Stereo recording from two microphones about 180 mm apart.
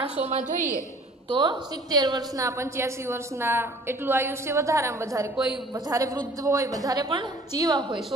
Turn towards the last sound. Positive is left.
turn(degrees=-25)  # may be behind; listen again after turning